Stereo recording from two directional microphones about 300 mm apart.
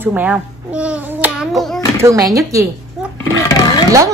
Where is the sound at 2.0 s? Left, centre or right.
Centre.